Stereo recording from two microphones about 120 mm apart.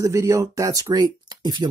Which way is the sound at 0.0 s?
25° right (ahead or behind).